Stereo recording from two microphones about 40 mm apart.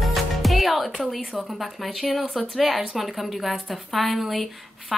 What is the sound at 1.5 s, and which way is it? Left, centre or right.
A woman's voice, centre.